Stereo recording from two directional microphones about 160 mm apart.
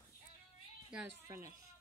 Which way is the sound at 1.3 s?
20° right (ahead or behind).